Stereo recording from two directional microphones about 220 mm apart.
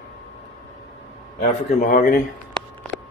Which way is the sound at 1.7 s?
35° left (ahead or behind).